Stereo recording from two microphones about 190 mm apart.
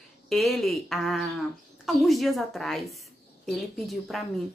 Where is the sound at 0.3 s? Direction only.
Centre (ahead or behind).